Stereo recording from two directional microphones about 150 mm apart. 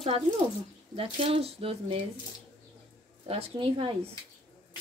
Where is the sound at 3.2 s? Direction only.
40° right (ahead or behind).